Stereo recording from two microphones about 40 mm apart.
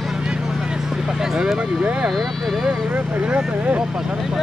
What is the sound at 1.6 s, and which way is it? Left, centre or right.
Speech, right.